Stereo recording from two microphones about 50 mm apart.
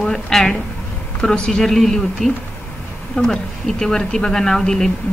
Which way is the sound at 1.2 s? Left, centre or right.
Centre.